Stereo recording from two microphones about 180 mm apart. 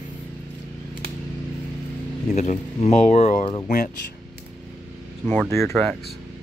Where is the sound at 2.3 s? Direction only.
40° left (ahead or behind).